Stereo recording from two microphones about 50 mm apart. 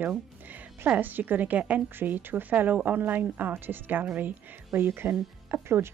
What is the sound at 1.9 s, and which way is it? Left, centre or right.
Speech, right.